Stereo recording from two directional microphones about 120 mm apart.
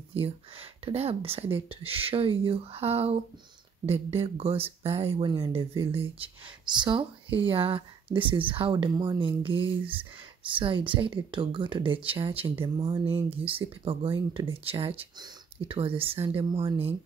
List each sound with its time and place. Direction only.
0.1 s speech: 50° right (ahead or behind)
8.9 s speech: 30° right (ahead or behind)
9.2 s speech: 45° right (ahead or behind)